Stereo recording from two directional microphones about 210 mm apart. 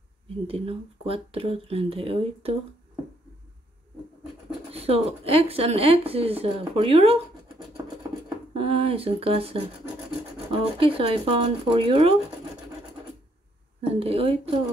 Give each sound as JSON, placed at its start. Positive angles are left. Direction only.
{"t": 0.5, "sound": "speech", "side_deg": -25}
{"t": 4.7, "sound": "speech", "side_deg": -30}
{"t": 8.5, "sound": "speech", "side_deg": -25}
{"t": 13.7, "sound": "speech", "side_deg": -25}